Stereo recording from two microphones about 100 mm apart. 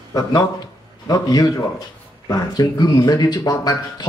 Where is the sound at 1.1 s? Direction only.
40° left (ahead or behind).